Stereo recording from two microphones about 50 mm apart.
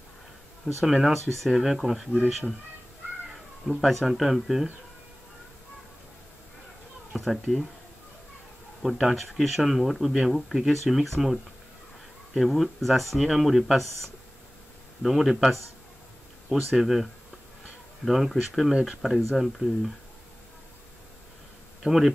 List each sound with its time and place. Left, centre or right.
0.7 s speech: centre
1.1 s speech: centre
3.6 s speech: centre
7.1 s speech: centre
8.8 s speech: centre
12.4 s speech: centre
15.0 s speech: centre
21.8 s speech: centre